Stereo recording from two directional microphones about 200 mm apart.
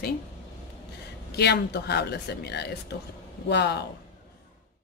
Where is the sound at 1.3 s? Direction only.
55° left (ahead or behind).